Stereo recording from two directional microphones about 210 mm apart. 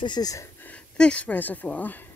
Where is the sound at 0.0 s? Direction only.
20° left (ahead or behind).